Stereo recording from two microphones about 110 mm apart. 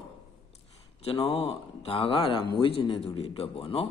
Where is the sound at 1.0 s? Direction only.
65° left (ahead or behind).